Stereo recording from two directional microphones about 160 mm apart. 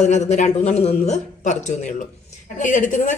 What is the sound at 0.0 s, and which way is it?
Speech, 45° left (ahead or behind).